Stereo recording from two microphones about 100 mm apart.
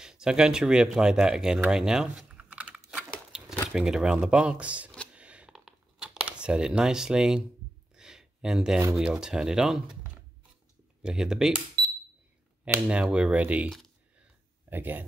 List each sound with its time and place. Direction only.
0.0 s a sound: 5° right (ahead or behind)
3.7 s speech: 5° right (ahead or behind)
5.1 s a sound: 10° right (ahead or behind)
8.9 s speech: 5° right (ahead or behind)
11.0 s speech: 5° right (ahead or behind)
12.8 s speech: 10° right (ahead or behind)
13.7 s speech: centre (ahead or behind)
14.7 s speech: 20° right (ahead or behind)